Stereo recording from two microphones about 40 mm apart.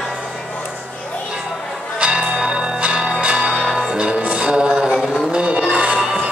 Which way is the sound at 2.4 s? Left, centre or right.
Right.